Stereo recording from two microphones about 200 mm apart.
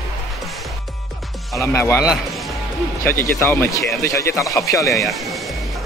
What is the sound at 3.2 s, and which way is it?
Speech, 10° left (ahead or behind).